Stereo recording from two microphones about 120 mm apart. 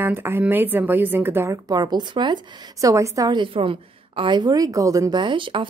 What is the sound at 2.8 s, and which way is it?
Speech, 25° right (ahead or behind).